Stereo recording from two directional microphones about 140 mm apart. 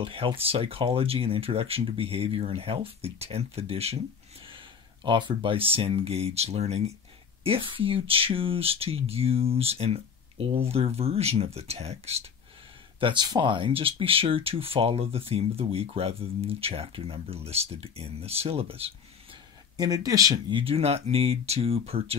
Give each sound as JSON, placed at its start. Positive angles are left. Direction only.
{"t": 0.0, "sound": "speech", "side_deg": -40}
{"t": 13.0, "sound": "speech", "side_deg": -30}
{"t": 19.8, "sound": "speech", "side_deg": -25}